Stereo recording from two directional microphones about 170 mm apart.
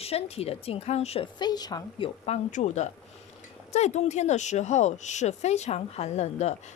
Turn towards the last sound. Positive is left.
turn(degrees=40)  # may be behind; listen again after turning